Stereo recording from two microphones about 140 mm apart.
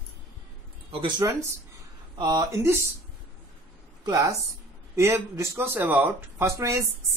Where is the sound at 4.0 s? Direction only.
25° right (ahead or behind).